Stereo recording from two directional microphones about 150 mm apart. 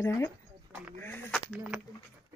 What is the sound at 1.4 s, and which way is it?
Speech, 10° right (ahead or behind).